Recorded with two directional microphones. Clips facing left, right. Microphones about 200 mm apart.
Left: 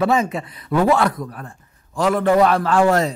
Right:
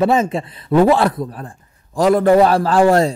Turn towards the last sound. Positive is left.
turn(degrees=-35)  # may be behind; listen again after turning